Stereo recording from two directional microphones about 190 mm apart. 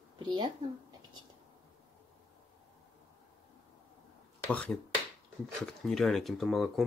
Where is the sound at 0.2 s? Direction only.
20° right (ahead or behind).